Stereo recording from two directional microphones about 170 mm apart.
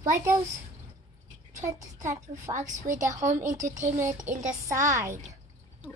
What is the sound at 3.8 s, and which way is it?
Speech, 15° right (ahead or behind).